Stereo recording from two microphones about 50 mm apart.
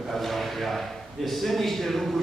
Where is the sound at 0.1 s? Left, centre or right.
Centre.